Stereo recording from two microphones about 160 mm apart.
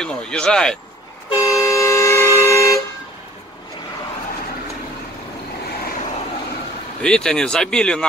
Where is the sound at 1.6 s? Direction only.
20° left (ahead or behind).